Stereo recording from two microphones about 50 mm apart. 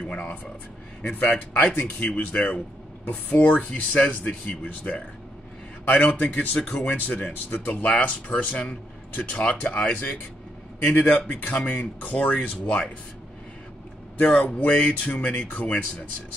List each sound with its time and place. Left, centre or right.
0.0 s speech: left
9.7 s speech: centre
9.9 s speech: left
14.1 s speech: left